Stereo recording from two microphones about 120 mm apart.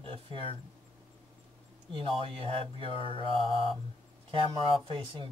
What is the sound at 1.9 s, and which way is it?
Speech, 50° right (ahead or behind).